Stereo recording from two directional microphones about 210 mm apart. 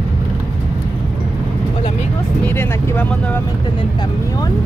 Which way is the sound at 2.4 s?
10° left (ahead or behind).